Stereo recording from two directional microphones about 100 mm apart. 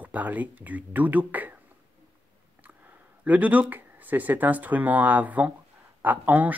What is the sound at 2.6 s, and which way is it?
Speech, 15° right (ahead or behind).